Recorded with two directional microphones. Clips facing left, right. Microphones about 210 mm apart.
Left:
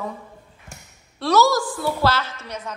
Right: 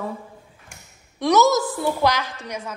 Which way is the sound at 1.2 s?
20° right (ahead or behind).